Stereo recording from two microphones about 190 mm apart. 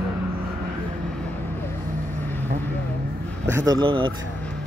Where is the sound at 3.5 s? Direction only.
20° right (ahead or behind).